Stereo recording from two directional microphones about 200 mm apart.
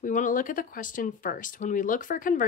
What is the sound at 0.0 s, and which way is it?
A woman's voice, 40° left (ahead or behind).